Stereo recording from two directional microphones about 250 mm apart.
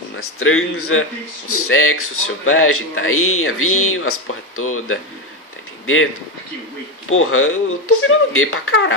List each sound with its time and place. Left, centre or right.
0.1 s speech: left
7.1 s speech: left